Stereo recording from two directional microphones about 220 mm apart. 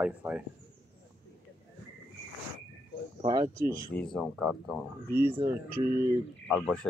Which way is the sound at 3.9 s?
5° left (ahead or behind).